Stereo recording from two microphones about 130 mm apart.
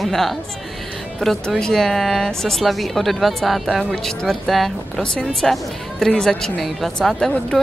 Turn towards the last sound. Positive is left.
turn(degrees=0)  # may be behind; listen again after turning